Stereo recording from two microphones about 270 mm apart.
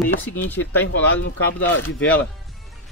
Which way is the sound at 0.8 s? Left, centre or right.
Left.